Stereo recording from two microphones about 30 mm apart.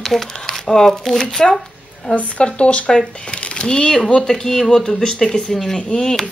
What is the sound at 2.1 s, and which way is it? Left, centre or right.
Speech, left.